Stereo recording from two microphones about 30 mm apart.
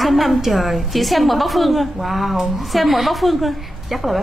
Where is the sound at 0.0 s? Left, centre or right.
Centre.